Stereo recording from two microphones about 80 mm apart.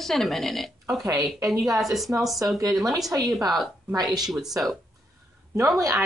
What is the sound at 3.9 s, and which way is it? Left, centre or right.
Speech, right.